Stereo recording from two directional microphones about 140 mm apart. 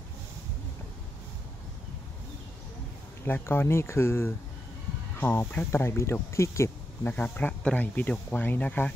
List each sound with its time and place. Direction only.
3.3 s speech: 15° left (ahead or behind)